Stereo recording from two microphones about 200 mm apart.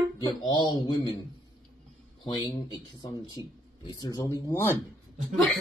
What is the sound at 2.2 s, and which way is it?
Speech, 20° left (ahead or behind).